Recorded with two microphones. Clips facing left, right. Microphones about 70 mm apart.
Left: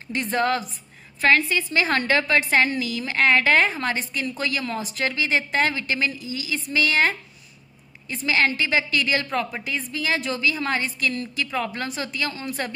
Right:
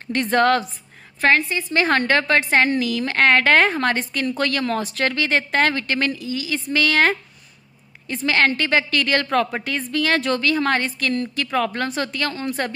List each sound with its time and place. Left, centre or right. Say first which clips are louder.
0.1 s a woman's voice: right 5 dB; right
1.2 s a woman's voice: right 1 dB; right
6.2 s a woman's voice: right 4 dB; right
8.3 s a woman's voice: right 3 dB; right